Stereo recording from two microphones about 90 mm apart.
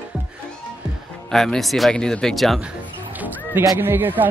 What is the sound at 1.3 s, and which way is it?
Speech, 5° left (ahead or behind).